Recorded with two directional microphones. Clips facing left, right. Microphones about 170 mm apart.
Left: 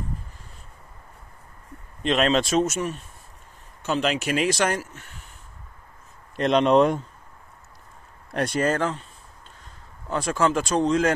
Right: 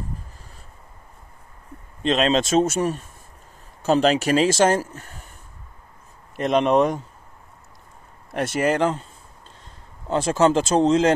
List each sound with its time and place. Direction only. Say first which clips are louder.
2.0 s speech: right 2 dB; 25° right (ahead or behind); by 5.3 s 40° right (ahead or behind)
6.3 s speech: even; 5° right (ahead or behind)
8.5 s speech: right 4 dB; 15° right (ahead or behind)
10.0 s speech: right 5 dB; 25° right (ahead or behind)